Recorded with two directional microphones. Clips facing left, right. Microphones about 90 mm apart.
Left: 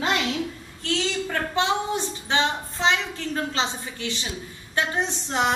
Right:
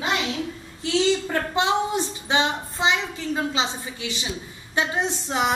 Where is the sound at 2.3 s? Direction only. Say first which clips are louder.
Right 1 dB; 15° right (ahead or behind).